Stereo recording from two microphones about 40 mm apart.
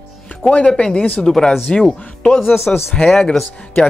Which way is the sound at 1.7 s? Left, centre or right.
Left.